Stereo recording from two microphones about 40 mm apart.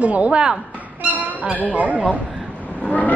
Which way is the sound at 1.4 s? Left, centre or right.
Right.